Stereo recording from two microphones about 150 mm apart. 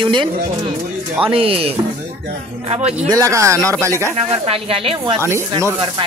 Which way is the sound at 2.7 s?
45° right (ahead or behind).